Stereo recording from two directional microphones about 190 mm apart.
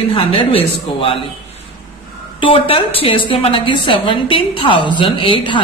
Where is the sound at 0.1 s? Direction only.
30° left (ahead or behind).